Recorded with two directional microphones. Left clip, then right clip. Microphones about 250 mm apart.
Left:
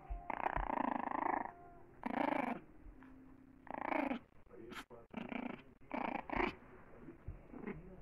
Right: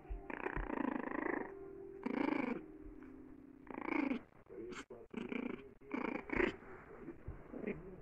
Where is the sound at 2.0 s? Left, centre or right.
Centre.